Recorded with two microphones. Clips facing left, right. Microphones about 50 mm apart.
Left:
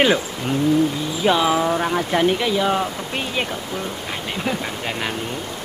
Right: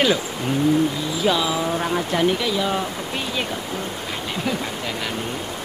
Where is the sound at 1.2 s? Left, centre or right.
Left.